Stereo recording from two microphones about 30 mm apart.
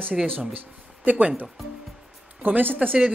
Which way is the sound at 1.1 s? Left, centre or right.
Right.